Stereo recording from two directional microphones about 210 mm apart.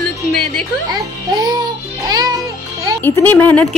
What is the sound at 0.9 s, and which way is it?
Music, 20° right (ahead or behind).